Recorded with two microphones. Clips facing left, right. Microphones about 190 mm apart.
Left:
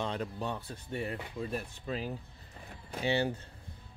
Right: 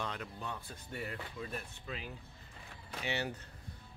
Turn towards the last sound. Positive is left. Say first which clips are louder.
# left 7 dB
turn(degrees=30)  # may be behind; listen again after turning